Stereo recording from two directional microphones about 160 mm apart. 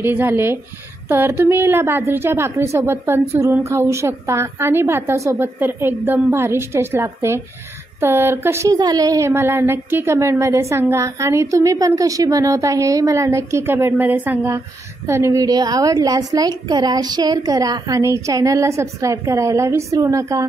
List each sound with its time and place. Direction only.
0.0 s a woman's voice: 15° right (ahead or behind)